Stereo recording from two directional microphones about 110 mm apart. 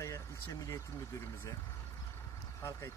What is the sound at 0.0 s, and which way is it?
Speech, 30° left (ahead or behind).